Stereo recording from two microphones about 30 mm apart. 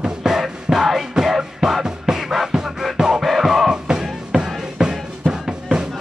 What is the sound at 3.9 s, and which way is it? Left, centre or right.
Music, right.